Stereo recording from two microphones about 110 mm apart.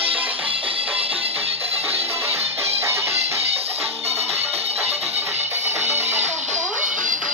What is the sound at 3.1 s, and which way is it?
Music, 70° right (ahead or behind).